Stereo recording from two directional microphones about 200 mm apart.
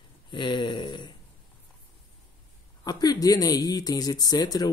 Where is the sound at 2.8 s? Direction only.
20° left (ahead or behind).